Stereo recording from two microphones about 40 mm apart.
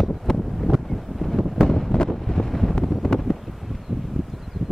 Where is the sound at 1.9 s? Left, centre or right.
Centre.